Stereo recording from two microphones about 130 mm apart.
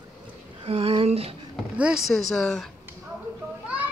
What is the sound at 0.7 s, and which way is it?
Speech, 50° right (ahead or behind).